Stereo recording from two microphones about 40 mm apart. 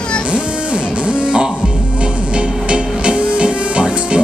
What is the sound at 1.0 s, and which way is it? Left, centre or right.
Music, right.